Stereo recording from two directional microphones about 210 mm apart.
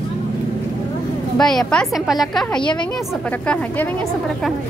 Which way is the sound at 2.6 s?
20° left (ahead or behind).